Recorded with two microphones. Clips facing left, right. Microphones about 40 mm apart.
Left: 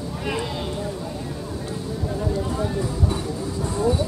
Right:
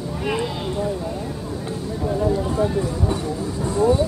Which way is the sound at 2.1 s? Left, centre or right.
Centre.